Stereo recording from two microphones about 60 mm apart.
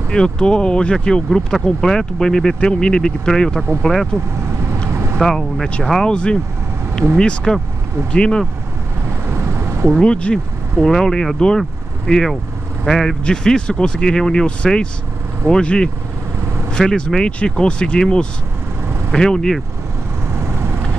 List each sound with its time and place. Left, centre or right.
0.1 s speech: centre
5.2 s speech: centre
7.2 s speech: centre
9.3 s vehicle: right
9.8 s speech: centre
20.3 s vehicle: right